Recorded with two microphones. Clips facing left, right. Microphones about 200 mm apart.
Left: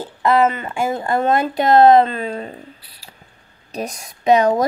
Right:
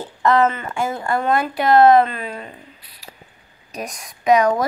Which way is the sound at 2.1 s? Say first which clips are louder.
Left 5 dB; 35° left (ahead or behind).